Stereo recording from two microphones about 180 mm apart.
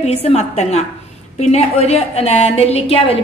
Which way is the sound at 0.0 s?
35° left (ahead or behind).